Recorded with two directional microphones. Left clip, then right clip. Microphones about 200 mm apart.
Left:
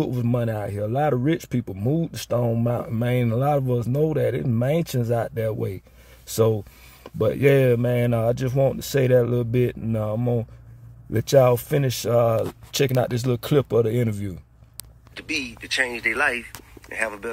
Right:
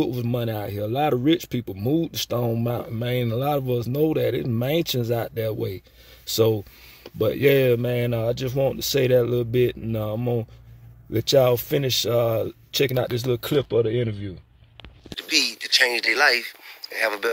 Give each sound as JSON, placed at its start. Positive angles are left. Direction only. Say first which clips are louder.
{"t": 0.0, "sound": "speech", "louder": "even", "side_deg": 0}
{"t": 15.3, "sound": "speech", "louder": "right 5 dB", "side_deg": -5}